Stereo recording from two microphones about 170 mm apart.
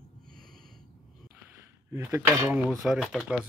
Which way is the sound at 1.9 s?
15° right (ahead or behind).